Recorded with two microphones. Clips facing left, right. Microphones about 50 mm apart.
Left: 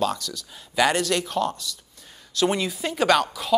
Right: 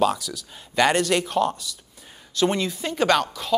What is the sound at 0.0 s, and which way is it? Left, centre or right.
Speech, centre.